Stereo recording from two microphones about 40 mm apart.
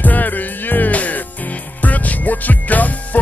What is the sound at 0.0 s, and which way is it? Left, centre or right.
Music, left.